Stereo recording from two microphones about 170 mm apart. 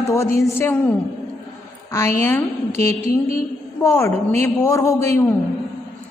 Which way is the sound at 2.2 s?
15° left (ahead or behind).